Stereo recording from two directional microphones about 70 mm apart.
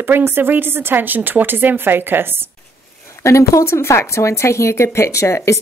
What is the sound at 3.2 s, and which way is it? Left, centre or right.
Speech, left.